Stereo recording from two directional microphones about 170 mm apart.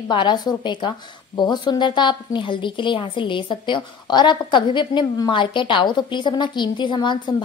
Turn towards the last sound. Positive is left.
turn(degrees=25)  # may be behind; listen again after turning